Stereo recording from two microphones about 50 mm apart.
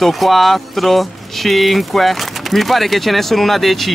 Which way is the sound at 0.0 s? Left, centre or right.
Centre.